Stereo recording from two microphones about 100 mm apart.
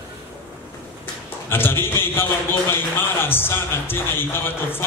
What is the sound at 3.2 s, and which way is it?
A man's voice, 20° left (ahead or behind).